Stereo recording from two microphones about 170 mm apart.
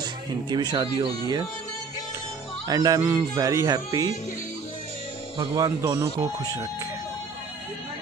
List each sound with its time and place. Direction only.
0.5 s speech: 25° right (ahead or behind)
2.7 s speech: 20° right (ahead or behind)
5.4 s speech: 30° right (ahead or behind)
5.8 s speech: 15° right (ahead or behind)